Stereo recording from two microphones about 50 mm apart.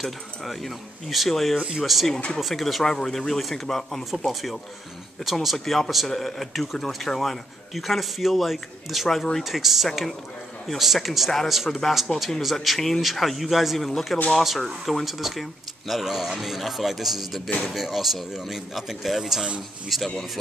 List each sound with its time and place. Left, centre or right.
0.0 s speech: centre
2.1 s speech: centre
2.4 s speech: centre